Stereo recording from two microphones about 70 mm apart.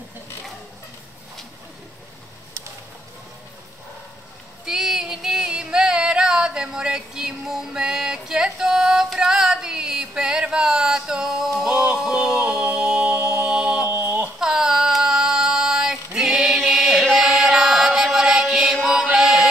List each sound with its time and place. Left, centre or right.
4.6 s female singing: centre
13.8 s a sound: right
14.4 s child singing: centre
18.9 s mantra: centre